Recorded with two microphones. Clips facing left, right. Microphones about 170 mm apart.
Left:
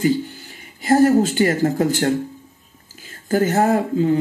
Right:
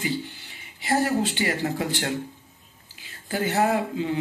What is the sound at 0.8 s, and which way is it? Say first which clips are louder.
Speech: left 9 dB; 45° left (ahead or behind).